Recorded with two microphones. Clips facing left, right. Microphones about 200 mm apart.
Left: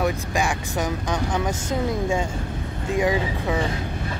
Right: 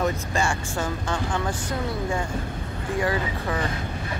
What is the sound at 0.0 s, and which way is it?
Speech, 15° left (ahead or behind).